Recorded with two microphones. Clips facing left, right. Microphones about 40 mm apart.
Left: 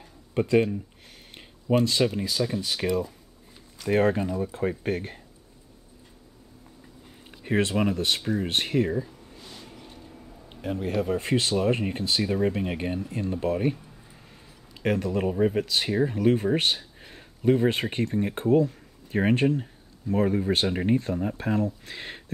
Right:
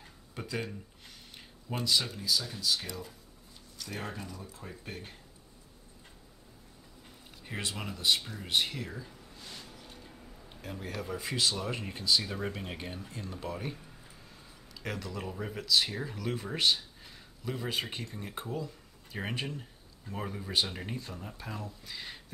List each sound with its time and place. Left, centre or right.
0.3 s speech: left
1.9 s speech: left
7.2 s speech: left
10.5 s a sound: left
11.0 s speech: left